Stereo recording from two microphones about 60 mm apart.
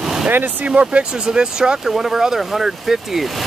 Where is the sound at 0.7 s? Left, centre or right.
Right.